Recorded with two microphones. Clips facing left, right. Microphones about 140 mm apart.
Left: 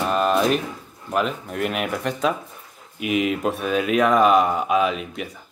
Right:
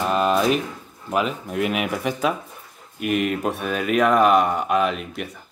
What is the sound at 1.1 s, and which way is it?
Speech, centre (ahead or behind).